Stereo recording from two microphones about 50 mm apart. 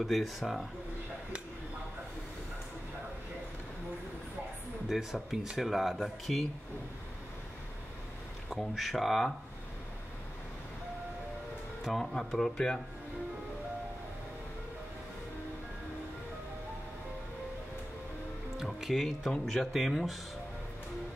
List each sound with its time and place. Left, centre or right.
0.0 s speech: centre
4.8 s speech: centre
8.5 s speech: centre
12.0 s speech: centre
18.8 s speech: centre